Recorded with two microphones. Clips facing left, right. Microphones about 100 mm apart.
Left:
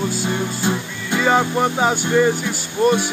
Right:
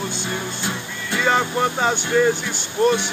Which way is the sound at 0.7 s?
15° left (ahead or behind).